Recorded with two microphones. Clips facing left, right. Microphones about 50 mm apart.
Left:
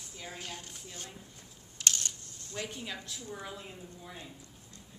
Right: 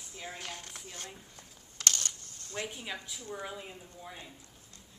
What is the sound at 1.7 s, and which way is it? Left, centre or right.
Camera, right.